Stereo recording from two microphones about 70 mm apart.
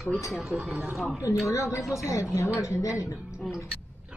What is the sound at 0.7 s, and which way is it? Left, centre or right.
Speech, right.